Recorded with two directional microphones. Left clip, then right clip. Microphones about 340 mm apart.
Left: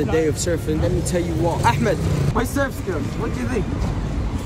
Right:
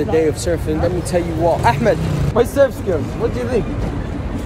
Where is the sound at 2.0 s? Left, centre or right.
Right.